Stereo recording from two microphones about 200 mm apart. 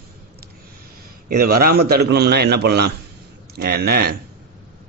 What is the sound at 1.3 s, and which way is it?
Speech, 50° right (ahead or behind).